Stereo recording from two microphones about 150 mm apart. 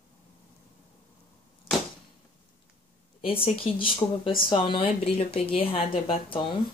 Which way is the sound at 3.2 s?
40° left (ahead or behind).